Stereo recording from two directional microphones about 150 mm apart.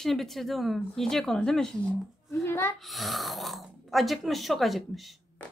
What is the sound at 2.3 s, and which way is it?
Speech, 15° left (ahead or behind).